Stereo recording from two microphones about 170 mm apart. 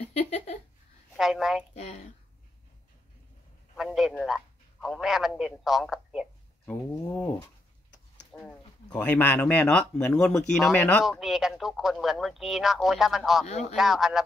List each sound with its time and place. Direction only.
0.0 s a sound: 40° left (ahead or behind)
1.1 s speech: centre (ahead or behind)
1.8 s speech: 45° left (ahead or behind)
3.7 s a man's voice: centre (ahead or behind)
6.6 s speech: 10° left (ahead or behind)
8.3 s a sound: 5° left (ahead or behind)
8.9 s speech: 10° left (ahead or behind)
13.5 s speech: 45° left (ahead or behind)
13.7 s speech: centre (ahead or behind)